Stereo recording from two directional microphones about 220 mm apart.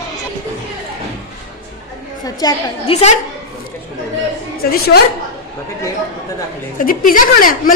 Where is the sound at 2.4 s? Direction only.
15° left (ahead or behind).